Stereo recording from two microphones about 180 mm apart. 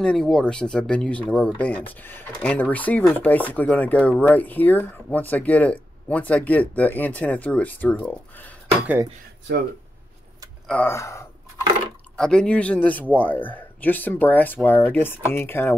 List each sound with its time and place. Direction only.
0.0 s speech: 5° left (ahead or behind)
10.7 s speech: 10° left (ahead or behind)
12.2 s speech: 5° left (ahead or behind)